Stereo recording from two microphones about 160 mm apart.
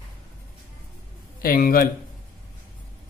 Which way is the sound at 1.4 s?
65° left (ahead or behind).